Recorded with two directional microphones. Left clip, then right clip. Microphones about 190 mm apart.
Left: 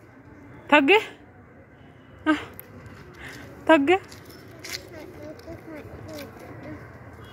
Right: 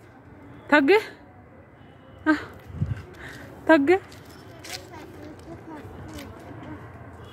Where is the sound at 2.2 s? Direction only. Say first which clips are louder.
Right 1 dB; 5° right (ahead or behind).